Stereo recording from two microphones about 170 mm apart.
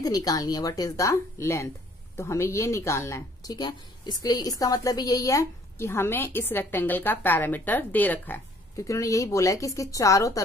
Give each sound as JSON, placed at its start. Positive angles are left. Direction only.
{"t": 0.0, "sound": "speech", "side_deg": 20}